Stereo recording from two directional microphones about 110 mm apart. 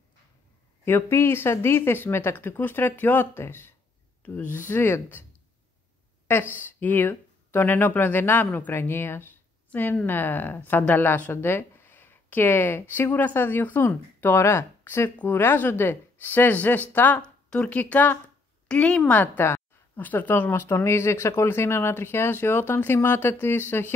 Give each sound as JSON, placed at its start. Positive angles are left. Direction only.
{"t": 0.8, "sound": "a woman's voice", "side_deg": 20}
{"t": 6.8, "sound": "a woman's voice", "side_deg": 15}